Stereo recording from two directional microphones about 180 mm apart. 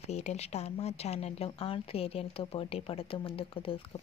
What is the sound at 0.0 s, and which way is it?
Speech, 40° left (ahead or behind).